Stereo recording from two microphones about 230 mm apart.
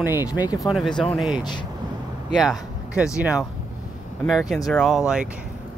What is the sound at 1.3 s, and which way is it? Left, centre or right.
Speech, centre.